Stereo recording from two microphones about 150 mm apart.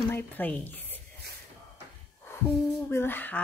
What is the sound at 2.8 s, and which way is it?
Speech, 15° left (ahead or behind).